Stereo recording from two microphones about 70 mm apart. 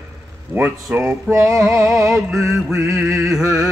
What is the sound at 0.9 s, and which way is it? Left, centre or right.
Male singing, right.